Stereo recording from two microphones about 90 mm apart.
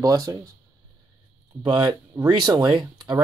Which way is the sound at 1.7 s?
60° right (ahead or behind).